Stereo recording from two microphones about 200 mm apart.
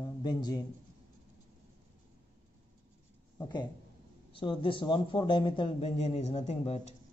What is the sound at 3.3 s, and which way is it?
A man's voice, 20° left (ahead or behind).